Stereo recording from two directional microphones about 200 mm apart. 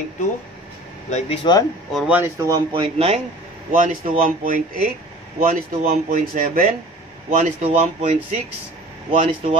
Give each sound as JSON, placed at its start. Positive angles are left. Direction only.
{"t": 1.1, "sound": "speech", "side_deg": 30}
{"t": 1.9, "sound": "speech", "side_deg": 0}
{"t": 2.1, "sound": "speech", "side_deg": -15}
{"t": 3.7, "sound": "speech", "side_deg": -40}